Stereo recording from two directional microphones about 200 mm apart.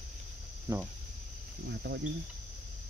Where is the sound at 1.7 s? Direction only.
55° right (ahead or behind).